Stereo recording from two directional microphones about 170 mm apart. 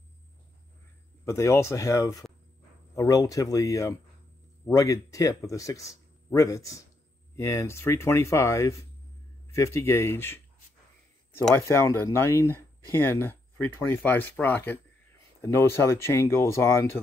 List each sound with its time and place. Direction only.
1.2 s speech: 15° left (ahead or behind)
11.6 s speech: 15° left (ahead or behind)